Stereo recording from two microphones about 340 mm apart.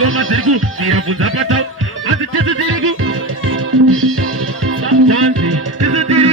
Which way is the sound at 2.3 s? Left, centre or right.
Right.